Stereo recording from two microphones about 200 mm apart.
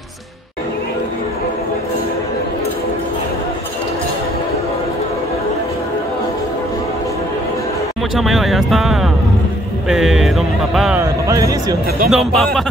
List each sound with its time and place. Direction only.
8.2 s speech: centre (ahead or behind)
11.0 s speech: 15° right (ahead or behind)
12.1 s speech: centre (ahead or behind)